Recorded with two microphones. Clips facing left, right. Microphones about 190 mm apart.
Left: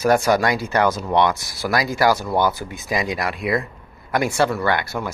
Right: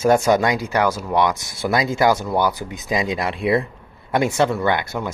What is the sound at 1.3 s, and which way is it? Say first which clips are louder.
Speech: right 1 dB; 20° right (ahead or behind).